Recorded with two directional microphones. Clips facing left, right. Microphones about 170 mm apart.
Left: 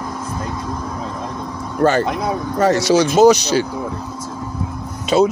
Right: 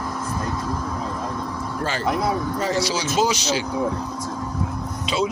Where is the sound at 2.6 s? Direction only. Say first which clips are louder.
Left 12 dB; 60° left (ahead or behind).